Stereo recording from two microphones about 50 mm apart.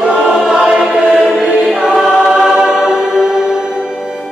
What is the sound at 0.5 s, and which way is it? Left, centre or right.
Choir, centre.